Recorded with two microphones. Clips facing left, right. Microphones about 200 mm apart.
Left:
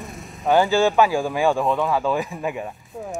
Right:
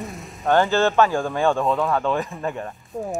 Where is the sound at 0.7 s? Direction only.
15° left (ahead or behind).